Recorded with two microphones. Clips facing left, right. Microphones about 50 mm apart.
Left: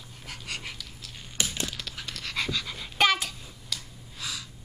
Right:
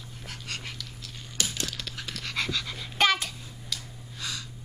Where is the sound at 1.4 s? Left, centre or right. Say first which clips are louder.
Left 1 dB; left.